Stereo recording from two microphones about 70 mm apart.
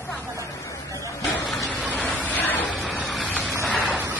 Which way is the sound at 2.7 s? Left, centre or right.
Centre.